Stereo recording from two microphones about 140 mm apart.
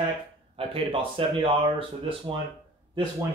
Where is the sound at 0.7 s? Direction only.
40° right (ahead or behind).